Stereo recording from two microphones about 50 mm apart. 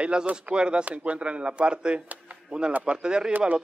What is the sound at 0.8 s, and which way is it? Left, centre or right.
Speech, right.